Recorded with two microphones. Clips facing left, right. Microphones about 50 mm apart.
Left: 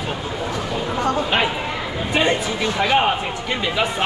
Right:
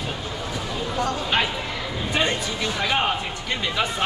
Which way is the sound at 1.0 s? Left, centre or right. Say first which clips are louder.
Left 4 dB; centre.